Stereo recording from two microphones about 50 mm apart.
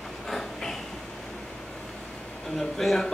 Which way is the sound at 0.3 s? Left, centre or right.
Centre.